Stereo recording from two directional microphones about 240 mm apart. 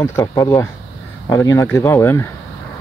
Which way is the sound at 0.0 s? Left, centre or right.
Centre.